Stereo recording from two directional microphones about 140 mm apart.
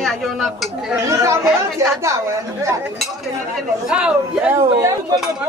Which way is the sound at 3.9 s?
10° right (ahead or behind).